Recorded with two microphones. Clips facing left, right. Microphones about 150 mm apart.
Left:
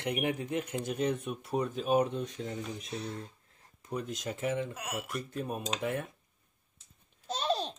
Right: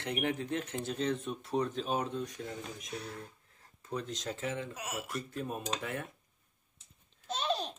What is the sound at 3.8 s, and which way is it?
Speech, 10° left (ahead or behind).